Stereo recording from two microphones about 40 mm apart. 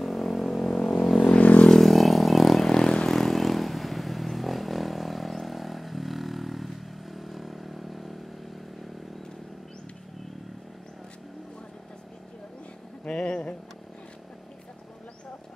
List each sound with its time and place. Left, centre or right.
0.0 s vehicle: centre
1.2 s vehicle: left
1.8 s vehicle: centre
2.6 s vehicle: centre
13.0 s a sound: left